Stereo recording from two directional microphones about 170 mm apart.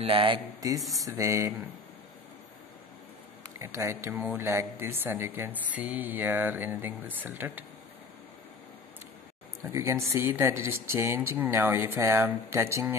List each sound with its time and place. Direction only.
0.0 s speech: 30° right (ahead or behind)
3.7 s speech: 15° right (ahead or behind)
9.6 s speech: 15° right (ahead or behind)